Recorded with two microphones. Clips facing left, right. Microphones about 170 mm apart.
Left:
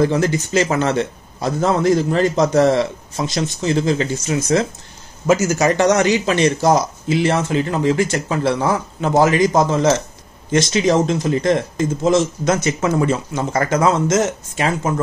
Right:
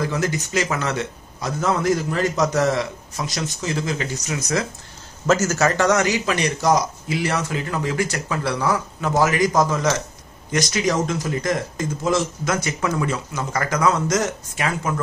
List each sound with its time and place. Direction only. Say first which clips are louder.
0.0 s speech: left 7 dB; 30° left (ahead or behind)
5.2 s speech: left 3 dB; 10° left (ahead or behind); by 15.0 s 30° left (ahead or behind)